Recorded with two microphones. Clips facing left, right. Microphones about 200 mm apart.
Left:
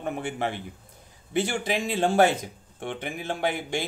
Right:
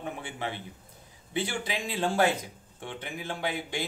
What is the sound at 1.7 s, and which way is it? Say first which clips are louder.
Speech: left 6 dB; 50° left (ahead or behind).